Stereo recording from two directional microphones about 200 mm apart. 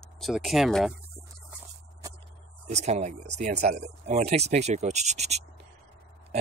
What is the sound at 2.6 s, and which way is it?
Speech, 35° right (ahead or behind).